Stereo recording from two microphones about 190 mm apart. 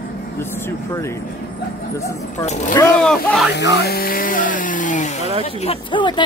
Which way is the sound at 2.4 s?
40° left (ahead or behind).